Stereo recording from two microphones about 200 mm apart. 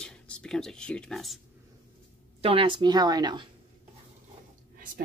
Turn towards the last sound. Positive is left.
turn(degrees=-45)  # may be behind; listen again after turning